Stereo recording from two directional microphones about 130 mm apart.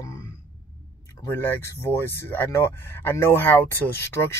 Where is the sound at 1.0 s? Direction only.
15° left (ahead or behind).